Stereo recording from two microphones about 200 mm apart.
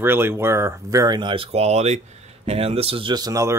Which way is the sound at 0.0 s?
10° right (ahead or behind).